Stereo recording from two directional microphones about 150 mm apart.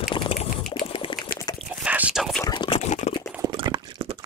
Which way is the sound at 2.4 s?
30° left (ahead or behind).